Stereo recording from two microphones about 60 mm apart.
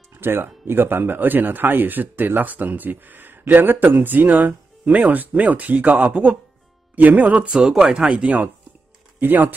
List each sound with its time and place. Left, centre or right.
0.1 s speech: right
7.6 s speech: centre
9.2 s speech: right